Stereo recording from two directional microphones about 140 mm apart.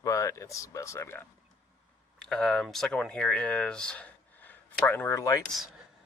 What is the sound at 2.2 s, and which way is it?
Speech, 5° left (ahead or behind).